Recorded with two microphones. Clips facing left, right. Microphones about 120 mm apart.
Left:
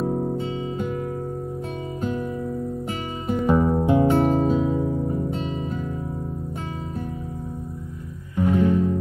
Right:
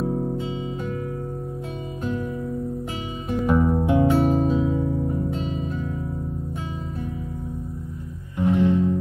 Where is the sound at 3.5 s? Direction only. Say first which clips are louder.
Even; 20° left (ahead or behind).